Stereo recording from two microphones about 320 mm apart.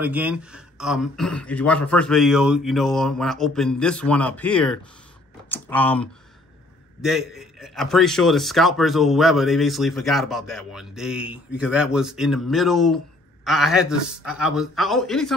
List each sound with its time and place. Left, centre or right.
0.0 s a man's voice: centre